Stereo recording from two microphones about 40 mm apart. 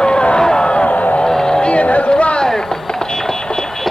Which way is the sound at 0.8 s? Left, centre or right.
Left.